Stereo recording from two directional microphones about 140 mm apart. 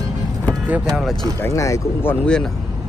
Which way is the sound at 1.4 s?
20° left (ahead or behind).